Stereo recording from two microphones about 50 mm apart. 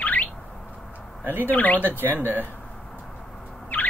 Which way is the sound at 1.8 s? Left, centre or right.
Right.